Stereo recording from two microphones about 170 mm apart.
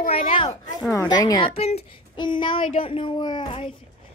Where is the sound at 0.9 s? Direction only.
20° left (ahead or behind).